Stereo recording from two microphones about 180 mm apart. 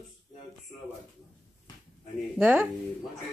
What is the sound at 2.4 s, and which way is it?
Speech, 10° right (ahead or behind).